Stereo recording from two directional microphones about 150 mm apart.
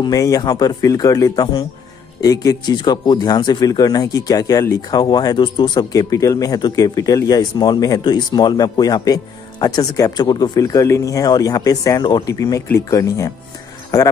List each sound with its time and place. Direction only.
0.0 s speech: 25° left (ahead or behind)